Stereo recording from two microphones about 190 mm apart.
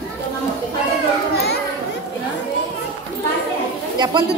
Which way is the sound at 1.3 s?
60° left (ahead or behind).